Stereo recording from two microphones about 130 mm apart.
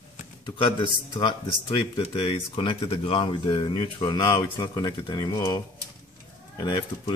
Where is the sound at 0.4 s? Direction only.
35° left (ahead or behind).